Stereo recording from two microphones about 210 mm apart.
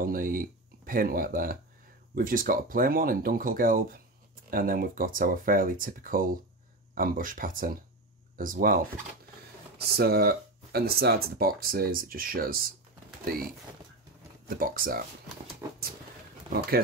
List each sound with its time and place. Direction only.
0.0 s speech: 40° right (ahead or behind)
14.5 s speech: 45° right (ahead or behind)